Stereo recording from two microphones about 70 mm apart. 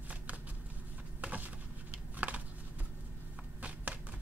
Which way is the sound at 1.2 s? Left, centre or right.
Right.